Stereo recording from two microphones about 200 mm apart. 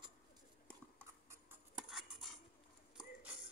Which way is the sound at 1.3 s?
5° right (ahead or behind).